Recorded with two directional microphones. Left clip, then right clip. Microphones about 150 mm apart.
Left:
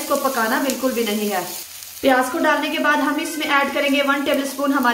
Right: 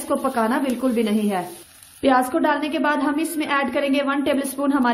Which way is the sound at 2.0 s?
60° right (ahead or behind).